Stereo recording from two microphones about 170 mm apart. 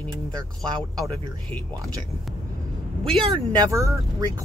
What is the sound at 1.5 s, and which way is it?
Speech, 10° left (ahead or behind).